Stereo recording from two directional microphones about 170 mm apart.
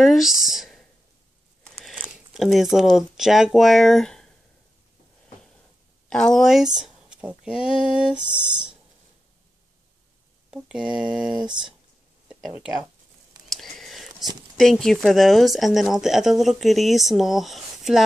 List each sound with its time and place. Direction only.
0.0 s a sound: centre (ahead or behind)
1.8 s speech: 5° right (ahead or behind)
6.0 s speech: 5° left (ahead or behind)
10.5 s mantra: 5° right (ahead or behind)
11.3 s speech: 25° right (ahead or behind)
12.3 s a sound: centre (ahead or behind)
14.6 s speech: centre (ahead or behind)